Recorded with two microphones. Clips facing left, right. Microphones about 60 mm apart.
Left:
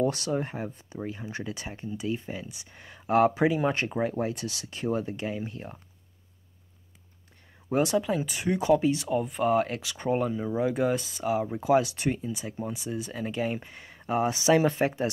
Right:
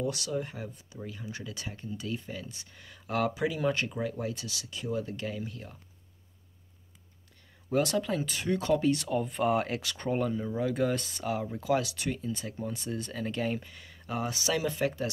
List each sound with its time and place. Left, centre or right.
0.0 s speech: left; by 2.8 s centre
2.8 s speech: left
5.1 s speech: left
7.7 s speech: centre
11.1 s speech: centre
11.3 s speech: left
12.2 s speech: centre
13.6 s speech: left